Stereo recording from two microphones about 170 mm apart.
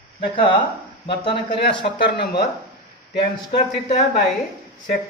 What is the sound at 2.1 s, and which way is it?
Speech, 80° left.